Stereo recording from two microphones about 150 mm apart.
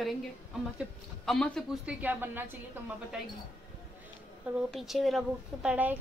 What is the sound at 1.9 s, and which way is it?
Speech, 10° right (ahead or behind).